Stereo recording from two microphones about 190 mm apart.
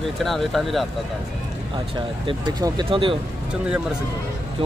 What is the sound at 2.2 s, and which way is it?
Speech, 25° right (ahead or behind).